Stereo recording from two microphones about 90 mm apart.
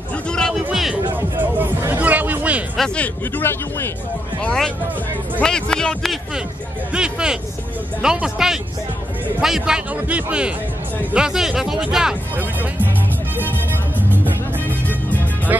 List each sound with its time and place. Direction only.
0.3 s music: 5° left (ahead or behind)
1.1 s music: 25° right (ahead or behind)
3.0 s speech: 20° left (ahead or behind)
4.4 s speech: 10° left (ahead or behind)
6.9 s speech: 10° right (ahead or behind)
13.5 s music: 20° right (ahead or behind)